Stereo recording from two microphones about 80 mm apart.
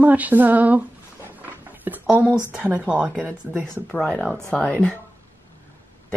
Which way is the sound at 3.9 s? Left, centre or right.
Centre.